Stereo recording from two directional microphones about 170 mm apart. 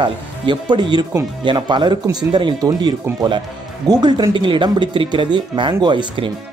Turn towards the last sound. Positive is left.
turn(degrees=-25)  # may be behind; listen again after turning